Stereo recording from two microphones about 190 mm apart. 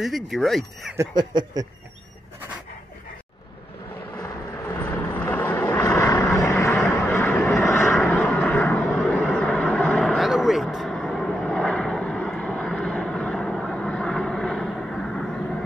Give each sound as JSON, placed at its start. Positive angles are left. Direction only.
{"t": 0.0, "sound": "speech", "side_deg": 0}
{"t": 0.9, "sound": "a sound", "side_deg": -20}
{"t": 4.6, "sound": "vehicle", "side_deg": 10}